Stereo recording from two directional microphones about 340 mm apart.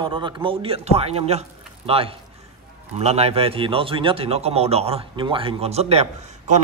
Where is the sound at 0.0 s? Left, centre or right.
Centre.